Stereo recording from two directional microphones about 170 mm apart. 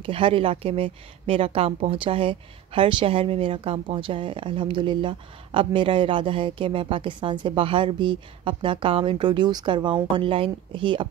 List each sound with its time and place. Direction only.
0.0 s a woman's voice: 30° right (ahead or behind)